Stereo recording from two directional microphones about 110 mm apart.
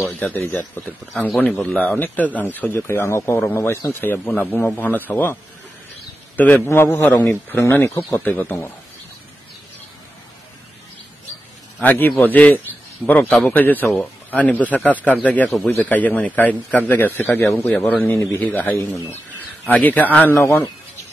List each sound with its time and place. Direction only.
0.2 s a man's voice: 15° left (ahead or behind)
11.8 s a man's voice: 15° left (ahead or behind)